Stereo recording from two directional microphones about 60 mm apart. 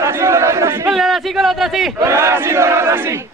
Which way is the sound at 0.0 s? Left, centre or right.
Right.